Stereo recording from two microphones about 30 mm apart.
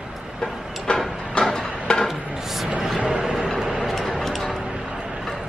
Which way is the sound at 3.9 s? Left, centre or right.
Centre.